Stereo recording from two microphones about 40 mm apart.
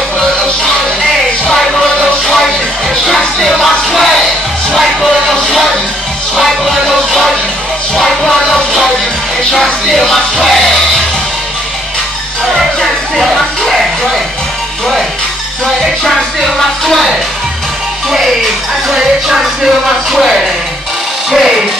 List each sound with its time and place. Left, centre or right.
2.2 s music: centre
8.2 s music: centre
9.9 s music: centre
13.1 s music: centre
16.5 s music: centre
18.9 s speech: centre